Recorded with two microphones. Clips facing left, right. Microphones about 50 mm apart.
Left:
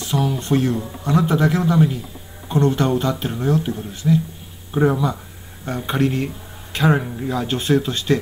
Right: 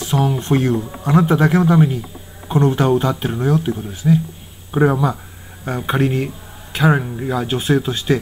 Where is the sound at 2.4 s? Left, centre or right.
Centre.